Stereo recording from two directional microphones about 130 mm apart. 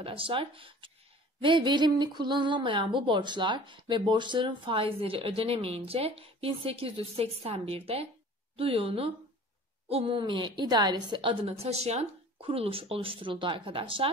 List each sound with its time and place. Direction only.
0.0 s speech: 40° right (ahead or behind)